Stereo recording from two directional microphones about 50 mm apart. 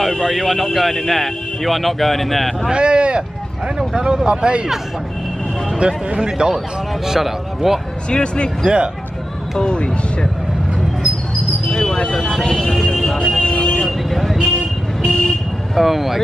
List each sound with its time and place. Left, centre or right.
0.1 s a man's voice: centre
2.7 s speech: right
5.8 s a man's voice: centre
8.1 s speech: centre
8.6 s speech: centre
9.6 s speech: centre
11.7 s a sound: centre
12.4 s a man's voice: centre
13.4 s vehicle: centre
13.8 s vehicle: centre